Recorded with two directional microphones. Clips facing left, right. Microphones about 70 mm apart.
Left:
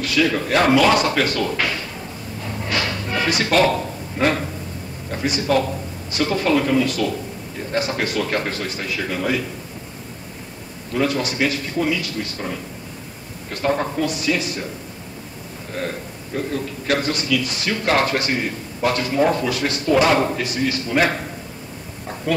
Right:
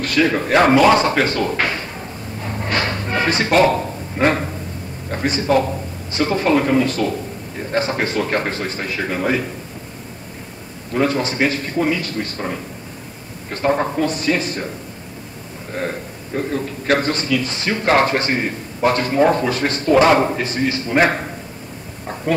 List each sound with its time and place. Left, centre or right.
0.0 s a man's voice: right
2.4 s a sound: right
5.1 s a man's voice: right
10.9 s a man's voice: right
15.7 s a man's voice: right